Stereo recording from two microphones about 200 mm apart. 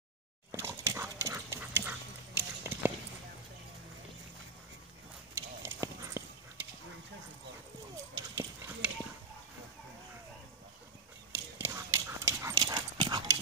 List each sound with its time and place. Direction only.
0.5 s dog: 15° right (ahead or behind)
5.3 s clip-clop: 15° right (ahead or behind)
8.4 s horse: 10° right (ahead or behind)
11.3 s dog: 10° right (ahead or behind)